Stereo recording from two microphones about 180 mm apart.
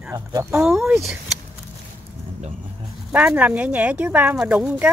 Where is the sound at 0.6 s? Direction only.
5° right (ahead or behind).